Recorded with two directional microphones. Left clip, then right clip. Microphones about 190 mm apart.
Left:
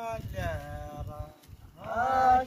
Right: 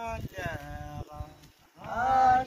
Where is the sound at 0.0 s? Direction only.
60° left (ahead or behind).